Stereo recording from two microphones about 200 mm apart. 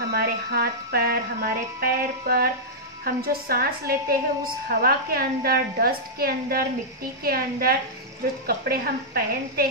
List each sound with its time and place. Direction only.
0.1 s speech: 50° right (ahead or behind)